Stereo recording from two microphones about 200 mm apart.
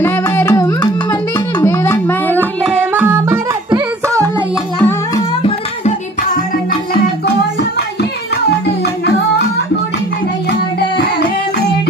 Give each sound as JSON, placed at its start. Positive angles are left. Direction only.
{"t": 0.0, "sound": "music", "side_deg": 10}
{"t": 2.6, "sound": "music", "side_deg": -10}
{"t": 4.7, "sound": "music", "side_deg": 10}
{"t": 5.4, "sound": "music", "side_deg": 35}